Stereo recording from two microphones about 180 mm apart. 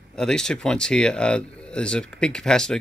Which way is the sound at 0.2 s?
5° left (ahead or behind).